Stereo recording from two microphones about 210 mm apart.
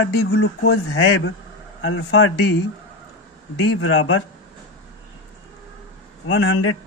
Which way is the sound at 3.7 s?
65° left (ahead or behind).